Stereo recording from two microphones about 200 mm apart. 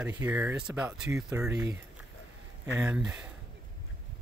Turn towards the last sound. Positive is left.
turn(degrees=-5)  # may be behind; listen again after turning